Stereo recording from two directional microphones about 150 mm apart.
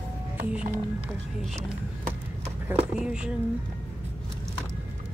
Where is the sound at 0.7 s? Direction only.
15° right (ahead or behind).